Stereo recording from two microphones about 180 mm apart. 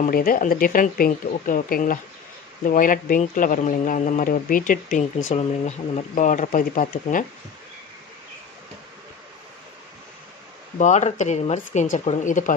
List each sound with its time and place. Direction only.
0.0 s speech: 50° left (ahead or behind)
10.8 s speech: 40° left (ahead or behind)